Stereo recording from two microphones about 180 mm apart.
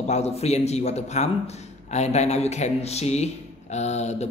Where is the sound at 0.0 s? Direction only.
35° left (ahead or behind).